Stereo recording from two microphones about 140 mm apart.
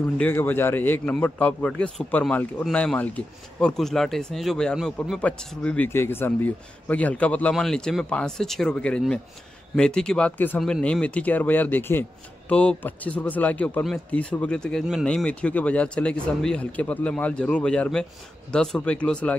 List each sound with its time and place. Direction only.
0.0 s a man's voice: 15° left (ahead or behind)